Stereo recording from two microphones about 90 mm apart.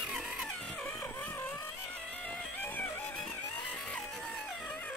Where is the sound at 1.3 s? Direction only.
20° left (ahead or behind).